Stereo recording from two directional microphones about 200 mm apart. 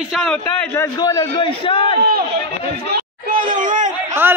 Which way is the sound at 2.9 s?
45° right (ahead or behind).